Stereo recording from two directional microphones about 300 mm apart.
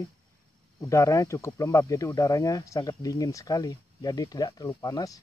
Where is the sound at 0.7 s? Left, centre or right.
Centre.